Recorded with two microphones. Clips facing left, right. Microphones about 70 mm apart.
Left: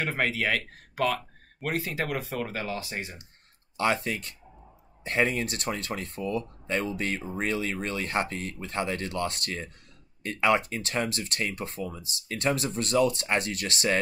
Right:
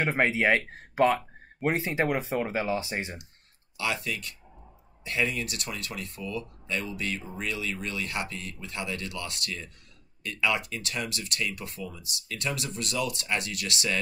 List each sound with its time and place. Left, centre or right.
0.0 s speech: right
3.7 s speech: left